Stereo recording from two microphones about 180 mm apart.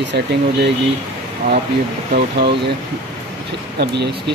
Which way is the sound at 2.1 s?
65° right (ahead or behind).